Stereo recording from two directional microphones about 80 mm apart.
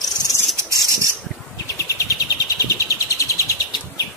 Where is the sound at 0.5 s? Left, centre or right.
Right.